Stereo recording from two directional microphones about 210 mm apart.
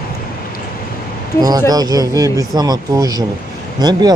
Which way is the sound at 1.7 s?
15° right (ahead or behind).